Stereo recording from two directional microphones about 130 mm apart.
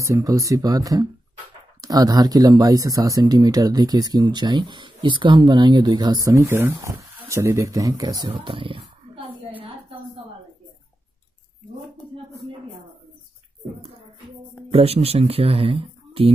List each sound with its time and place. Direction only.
0.0 s speech: 25° right (ahead or behind)
8.4 s roaring cats: 40° right (ahead or behind)
14.7 s speech: 50° right (ahead or behind)